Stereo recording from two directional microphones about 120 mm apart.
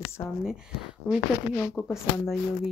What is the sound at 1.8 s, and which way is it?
Speech, 5° left (ahead or behind).